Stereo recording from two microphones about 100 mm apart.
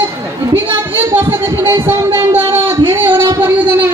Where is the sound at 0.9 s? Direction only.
20° right (ahead or behind).